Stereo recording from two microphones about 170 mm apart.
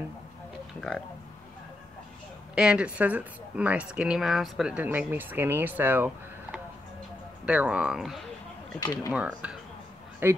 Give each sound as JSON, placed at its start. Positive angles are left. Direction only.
{"t": 0.7, "sound": "speech", "side_deg": 5}
{"t": 2.5, "sound": "speech", "side_deg": -5}
{"t": 8.7, "sound": "speech", "side_deg": 20}
{"t": 9.1, "sound": "speech", "side_deg": -10}